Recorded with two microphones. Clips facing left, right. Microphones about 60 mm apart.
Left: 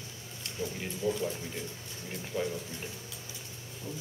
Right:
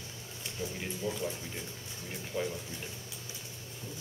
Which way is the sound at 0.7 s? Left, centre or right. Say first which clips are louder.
Left 5 dB; centre.